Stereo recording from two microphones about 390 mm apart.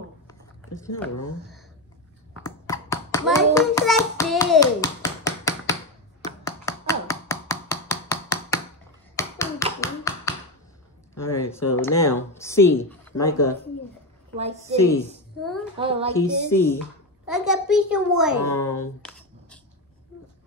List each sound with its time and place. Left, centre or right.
0.3 s a sound: centre
2.4 s hands: centre
6.2 s a sound: centre
9.1 s tap: centre
11.1 s a sound: centre
11.8 s speech: centre
14.3 s a woman's voice: centre
15.8 s a woman's voice: centre
16.1 s a child's voice: centre